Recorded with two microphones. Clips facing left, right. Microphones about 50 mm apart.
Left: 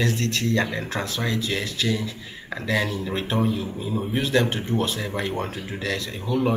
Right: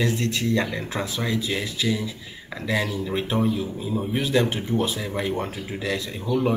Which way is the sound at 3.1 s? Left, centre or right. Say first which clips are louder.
Right 1 dB; centre.